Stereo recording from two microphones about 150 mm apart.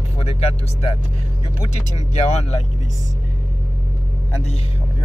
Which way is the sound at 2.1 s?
45° left (ahead or behind).